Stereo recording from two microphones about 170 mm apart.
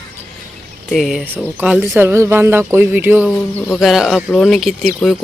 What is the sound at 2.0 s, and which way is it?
Speech, 15° right (ahead or behind).